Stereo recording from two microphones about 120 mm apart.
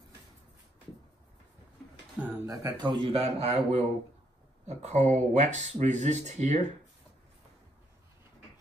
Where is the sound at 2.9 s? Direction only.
50° right (ahead or behind); by 6.6 s 75° right (ahead or behind).